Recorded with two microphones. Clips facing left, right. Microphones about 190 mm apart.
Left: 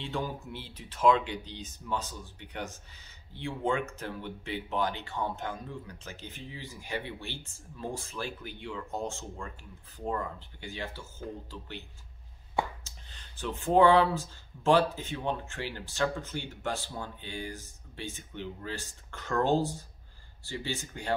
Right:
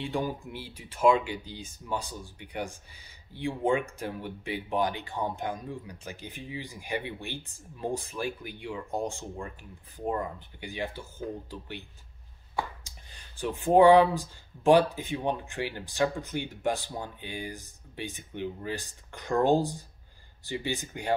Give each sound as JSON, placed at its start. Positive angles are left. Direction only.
{"t": 0.0, "sound": "speech", "side_deg": -15}
{"t": 12.8, "sound": "speech", "side_deg": -15}